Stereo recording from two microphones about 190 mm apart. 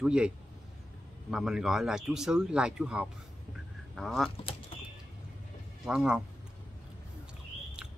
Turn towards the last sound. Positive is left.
turn(degrees=-5)  # may be behind; listen again after turning